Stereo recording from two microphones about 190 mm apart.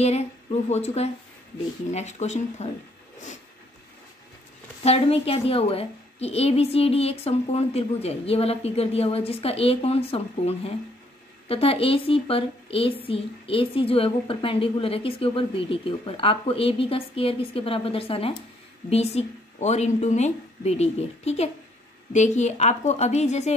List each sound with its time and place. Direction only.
0.0 s a woman's voice: 35° left (ahead or behind)
4.8 s a woman's voice: 30° left (ahead or behind)